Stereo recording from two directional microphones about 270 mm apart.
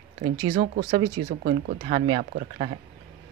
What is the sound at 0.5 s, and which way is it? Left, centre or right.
Speech, right.